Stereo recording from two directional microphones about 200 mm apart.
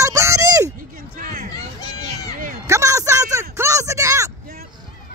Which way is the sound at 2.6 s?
15° right (ahead or behind).